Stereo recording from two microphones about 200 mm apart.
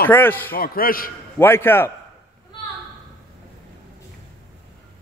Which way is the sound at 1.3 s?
10° left (ahead or behind).